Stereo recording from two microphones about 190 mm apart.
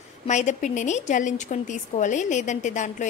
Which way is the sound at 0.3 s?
40° left (ahead or behind).